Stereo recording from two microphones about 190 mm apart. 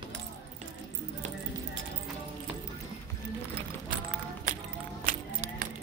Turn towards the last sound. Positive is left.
turn(degrees=-45)  # may be behind; listen again after turning